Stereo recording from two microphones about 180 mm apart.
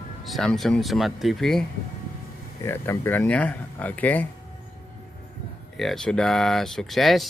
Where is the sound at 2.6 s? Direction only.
10° left (ahead or behind).